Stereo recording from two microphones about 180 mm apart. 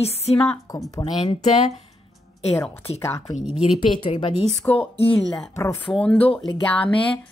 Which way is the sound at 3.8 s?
30° left (ahead or behind).